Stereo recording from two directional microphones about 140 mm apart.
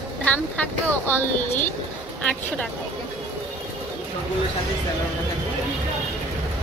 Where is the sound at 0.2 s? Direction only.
10° left (ahead or behind).